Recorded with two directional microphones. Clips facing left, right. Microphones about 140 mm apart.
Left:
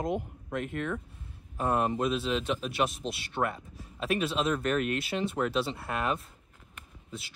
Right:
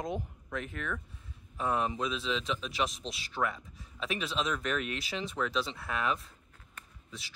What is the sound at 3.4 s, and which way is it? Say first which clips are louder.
Speech: left 2 dB; 25° left (ahead or behind).